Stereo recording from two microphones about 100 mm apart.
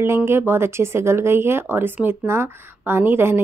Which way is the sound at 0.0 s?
25° right (ahead or behind).